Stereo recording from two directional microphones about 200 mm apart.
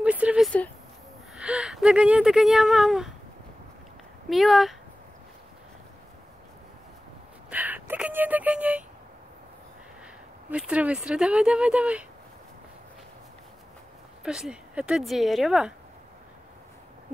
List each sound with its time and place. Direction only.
0.0 s a sound: 5° right (ahead or behind)
1.3 s speech: 5° right (ahead or behind)
4.3 s speech: centre (ahead or behind)
7.4 s a sound: 10° right (ahead or behind)
10.5 s speech: 5° right (ahead or behind)
14.2 s speech: 5° right (ahead or behind)